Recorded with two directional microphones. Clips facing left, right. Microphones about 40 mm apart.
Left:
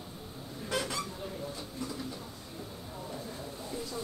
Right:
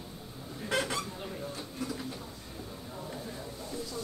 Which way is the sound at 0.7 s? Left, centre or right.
Right.